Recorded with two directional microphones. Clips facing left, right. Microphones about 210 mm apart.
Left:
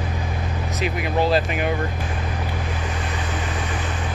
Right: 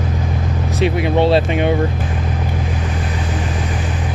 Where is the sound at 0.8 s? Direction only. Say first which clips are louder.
Right 7 dB; 30° right (ahead or behind).